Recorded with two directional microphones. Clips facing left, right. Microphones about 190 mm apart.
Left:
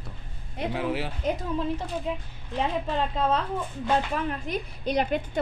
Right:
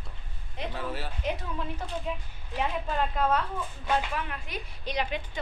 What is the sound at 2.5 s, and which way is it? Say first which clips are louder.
A woman's voice: left 3 dB; 30° left (ahead or behind).